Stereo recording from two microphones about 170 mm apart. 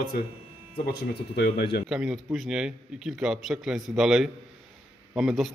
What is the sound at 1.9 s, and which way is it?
A man's voice, 5° right (ahead or behind).